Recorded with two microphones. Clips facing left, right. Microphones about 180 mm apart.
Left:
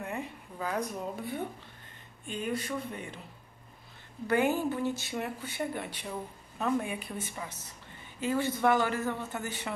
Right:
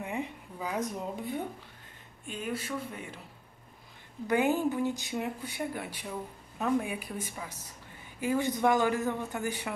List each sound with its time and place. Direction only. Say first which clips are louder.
0.0 s a sound: right 2 dB; 15° right (ahead or behind)
0.7 s speech: right 2 dB; 20° right (ahead or behind)
2.2 s speech: left 2 dB; 5° right (ahead or behind)
4.3 s speech: right 1 dB; 15° right (ahead or behind)